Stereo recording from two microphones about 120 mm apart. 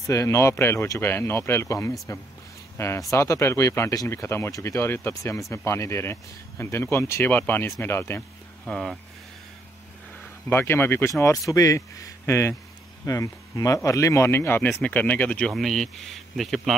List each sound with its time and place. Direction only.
0.0 s speech: 25° left (ahead or behind)
8.6 s speech: 5° left (ahead or behind)
10.5 s speech: 15° left (ahead or behind); by 16.7 s centre (ahead or behind)